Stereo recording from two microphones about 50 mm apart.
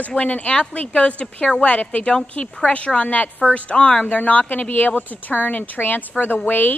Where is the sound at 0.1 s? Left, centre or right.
Left.